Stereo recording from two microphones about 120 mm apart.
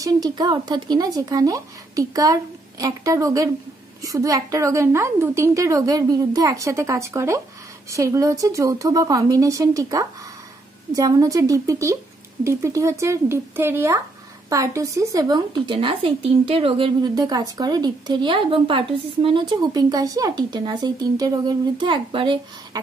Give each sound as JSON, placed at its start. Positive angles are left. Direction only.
{"t": 0.0, "sound": "speech", "side_deg": -35}
{"t": 17.0, "sound": "speech", "side_deg": -35}